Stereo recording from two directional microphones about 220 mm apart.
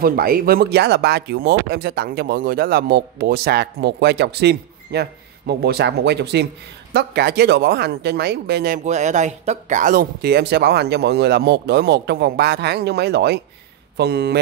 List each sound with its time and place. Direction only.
0.0 s speech: 40° right (ahead or behind)